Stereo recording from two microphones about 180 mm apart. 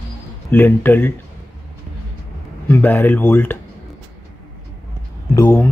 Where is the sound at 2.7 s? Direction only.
10° left (ahead or behind).